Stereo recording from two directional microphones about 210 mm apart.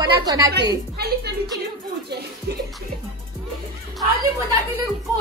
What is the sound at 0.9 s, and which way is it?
Speech, 50° right (ahead or behind).